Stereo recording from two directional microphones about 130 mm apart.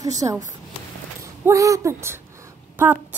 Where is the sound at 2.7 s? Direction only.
15° right (ahead or behind).